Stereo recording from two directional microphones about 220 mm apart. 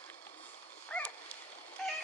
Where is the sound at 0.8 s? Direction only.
5° left (ahead or behind).